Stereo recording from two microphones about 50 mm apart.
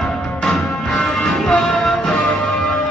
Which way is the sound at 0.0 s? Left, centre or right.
Centre.